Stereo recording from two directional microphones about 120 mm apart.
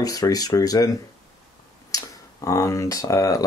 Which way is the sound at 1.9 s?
30° left (ahead or behind).